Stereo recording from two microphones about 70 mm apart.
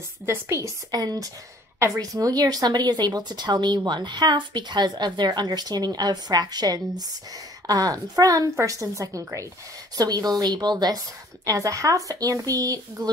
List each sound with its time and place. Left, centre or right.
0.3 s a woman's voice: right
0.9 s a woman's voice: right
9.9 s speech: right
11.4 s speech: right